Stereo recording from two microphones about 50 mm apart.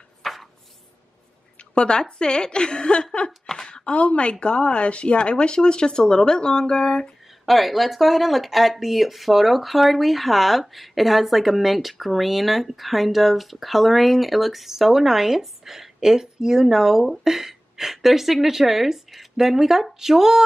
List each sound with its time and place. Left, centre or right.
0.2 s chopping: centre
1.8 s a woman's voice: centre
3.3 s a woman's voice: centre
7.4 s speech: centre